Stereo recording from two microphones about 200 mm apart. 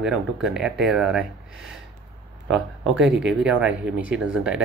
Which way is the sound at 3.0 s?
65° right (ahead or behind).